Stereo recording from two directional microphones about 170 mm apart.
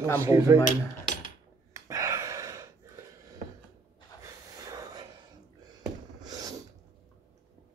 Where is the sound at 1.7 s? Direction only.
20° right (ahead or behind).